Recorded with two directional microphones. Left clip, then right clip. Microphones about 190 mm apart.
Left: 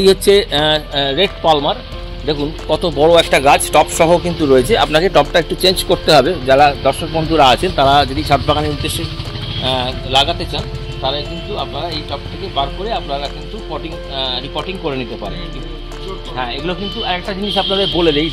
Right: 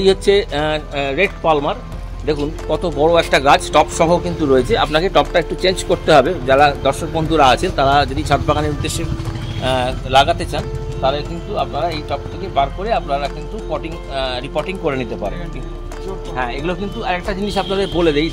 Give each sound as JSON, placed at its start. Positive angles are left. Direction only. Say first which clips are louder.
{"t": 0.0, "sound": "speech", "louder": "left 3 dB", "side_deg": 40}
{"t": 3.0, "sound": "speech", "louder": "left 3 dB", "side_deg": 30}
{"t": 8.5, "sound": "a man's voice", "louder": "left 2 dB", "side_deg": 20}
{"t": 9.6, "sound": "speech", "louder": "even", "side_deg": -5}
{"t": 16.3, "sound": "speech", "louder": "left 1 dB", "side_deg": 15}
{"t": 17.6, "sound": "speech", "louder": "left 2 dB", "side_deg": 30}